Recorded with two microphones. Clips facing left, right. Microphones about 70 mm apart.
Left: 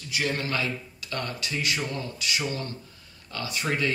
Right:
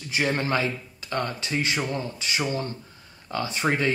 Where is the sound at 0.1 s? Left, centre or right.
Right.